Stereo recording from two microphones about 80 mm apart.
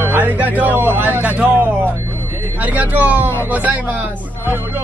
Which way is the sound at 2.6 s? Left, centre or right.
Right.